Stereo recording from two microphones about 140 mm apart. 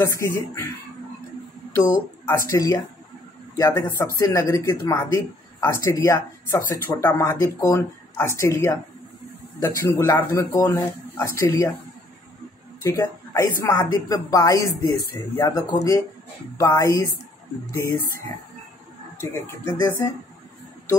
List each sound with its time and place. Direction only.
0.0 s speech: 20° left (ahead or behind)
2.2 s speech: 20° left (ahead or behind)
12.8 s speech: 25° left (ahead or behind)
19.4 s speech: 15° left (ahead or behind)